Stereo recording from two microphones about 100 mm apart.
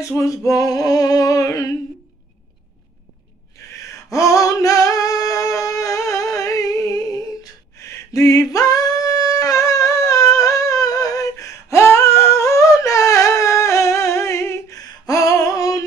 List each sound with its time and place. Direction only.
0.2 s female singing: 35° left (ahead or behind)
3.7 s singing: 35° left (ahead or behind)